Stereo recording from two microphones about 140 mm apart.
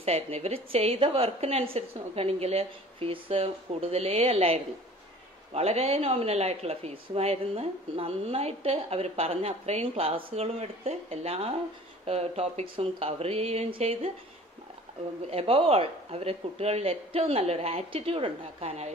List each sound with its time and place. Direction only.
0.0 s speech: 50° right (ahead or behind)
15.2 s speech: 45° right (ahead or behind)